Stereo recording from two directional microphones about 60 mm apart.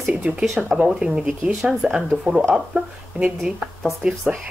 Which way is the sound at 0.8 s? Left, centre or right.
Centre.